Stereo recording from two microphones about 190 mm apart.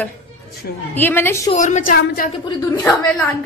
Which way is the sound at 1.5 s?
40° left (ahead or behind).